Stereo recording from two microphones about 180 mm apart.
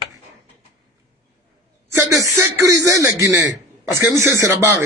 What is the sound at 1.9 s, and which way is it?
A man's voice, 20° right (ahead or behind).